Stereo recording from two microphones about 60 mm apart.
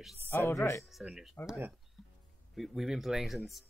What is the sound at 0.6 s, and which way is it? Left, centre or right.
Speech, left.